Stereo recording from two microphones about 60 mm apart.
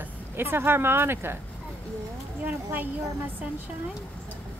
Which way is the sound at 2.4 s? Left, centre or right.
Right.